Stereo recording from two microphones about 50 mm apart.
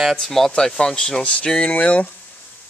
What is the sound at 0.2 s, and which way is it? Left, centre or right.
Speech, centre.